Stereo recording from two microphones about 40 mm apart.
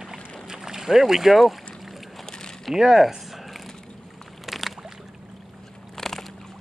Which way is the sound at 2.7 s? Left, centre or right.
Centre.